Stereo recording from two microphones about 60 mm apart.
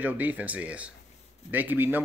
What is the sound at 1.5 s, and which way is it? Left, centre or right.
Speech, right.